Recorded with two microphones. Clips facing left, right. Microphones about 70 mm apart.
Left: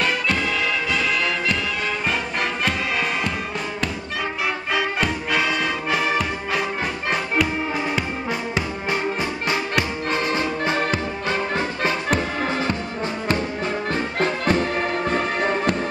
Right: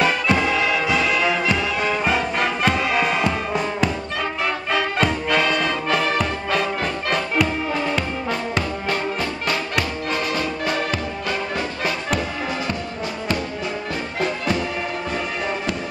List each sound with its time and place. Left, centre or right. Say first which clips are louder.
0.0 s music: right 3 dB; centre
4.7 s music: right 3 dB; centre
10.1 s music: left 2 dB; left
14.2 s music: left 2 dB; left